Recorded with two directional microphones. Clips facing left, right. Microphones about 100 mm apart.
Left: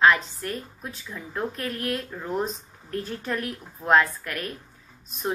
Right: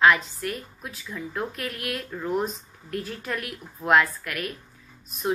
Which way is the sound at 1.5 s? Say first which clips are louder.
Left 3 dB; 35° left (ahead or behind).